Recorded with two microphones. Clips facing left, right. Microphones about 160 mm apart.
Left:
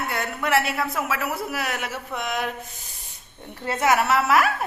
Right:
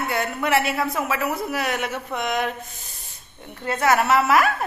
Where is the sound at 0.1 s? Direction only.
Centre (ahead or behind).